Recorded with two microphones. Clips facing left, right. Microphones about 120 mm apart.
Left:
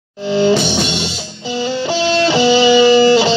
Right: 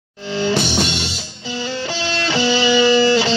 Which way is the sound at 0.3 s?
20° left (ahead or behind).